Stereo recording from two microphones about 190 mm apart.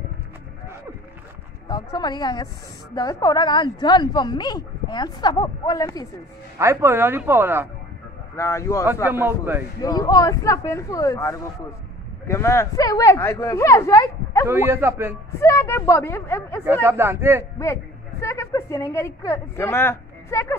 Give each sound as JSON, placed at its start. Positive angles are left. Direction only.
{"t": 1.7, "sound": "a woman's voice", "side_deg": 20}
{"t": 6.6, "sound": "speech", "side_deg": -15}
{"t": 8.4, "sound": "a woman's voice", "side_deg": 15}
{"t": 9.0, "sound": "speech", "side_deg": -10}
{"t": 9.8, "sound": "a woman's voice", "side_deg": 20}
{"t": 14.5, "sound": "speech", "side_deg": -10}
{"t": 15.3, "sound": "a woman's voice", "side_deg": 15}
{"t": 16.8, "sound": "speech", "side_deg": -10}
{"t": 18.2, "sound": "a woman's voice", "side_deg": 15}